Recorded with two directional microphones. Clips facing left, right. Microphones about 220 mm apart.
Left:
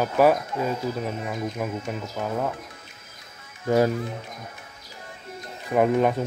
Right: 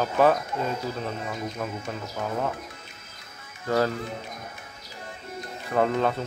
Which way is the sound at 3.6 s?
15° left (ahead or behind).